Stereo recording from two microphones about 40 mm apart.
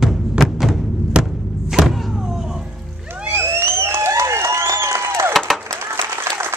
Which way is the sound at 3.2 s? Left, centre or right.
Right.